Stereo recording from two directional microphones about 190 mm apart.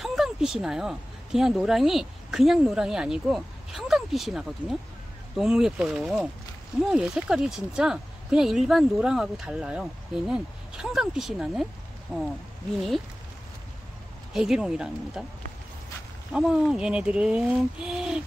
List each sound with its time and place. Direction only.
0.0 s speech: centre (ahead or behind)
14.3 s speech: centre (ahead or behind)
16.3 s speech: 5° right (ahead or behind)